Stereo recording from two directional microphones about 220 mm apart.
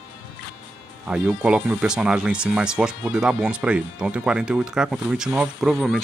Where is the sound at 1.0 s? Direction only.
5° right (ahead or behind).